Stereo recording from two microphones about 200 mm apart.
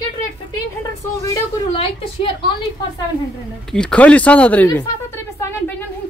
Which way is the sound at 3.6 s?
5° left (ahead or behind).